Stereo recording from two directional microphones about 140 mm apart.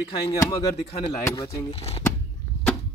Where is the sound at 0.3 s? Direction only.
25° left (ahead or behind).